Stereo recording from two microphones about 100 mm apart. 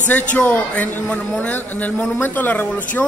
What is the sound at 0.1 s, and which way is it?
A man's voice, 15° left (ahead or behind).